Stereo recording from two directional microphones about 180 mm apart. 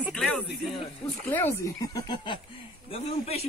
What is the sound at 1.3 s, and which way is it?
A man's voice, 15° left (ahead or behind).